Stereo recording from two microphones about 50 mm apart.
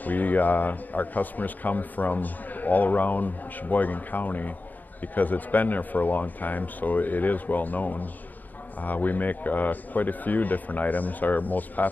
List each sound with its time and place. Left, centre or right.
0.0 s a man's voice: left